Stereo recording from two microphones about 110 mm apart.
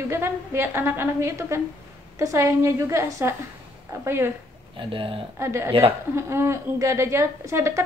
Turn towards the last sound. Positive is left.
turn(degrees=-25)  # may be behind; listen again after turning